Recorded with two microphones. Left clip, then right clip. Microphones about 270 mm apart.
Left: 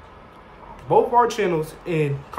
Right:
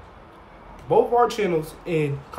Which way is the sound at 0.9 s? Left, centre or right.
Centre.